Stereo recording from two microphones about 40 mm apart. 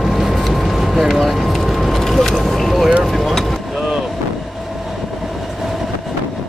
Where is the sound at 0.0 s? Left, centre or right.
Centre.